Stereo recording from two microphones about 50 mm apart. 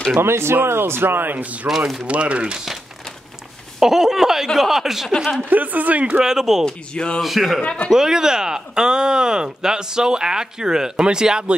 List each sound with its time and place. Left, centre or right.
0.1 s speech: right
1.4 s speech: right
3.8 s speech: centre
5.4 s speech: right
6.2 s speech: centre
6.9 s speech: centre
7.2 s speech: centre
7.6 s speech: left
7.9 s speech: centre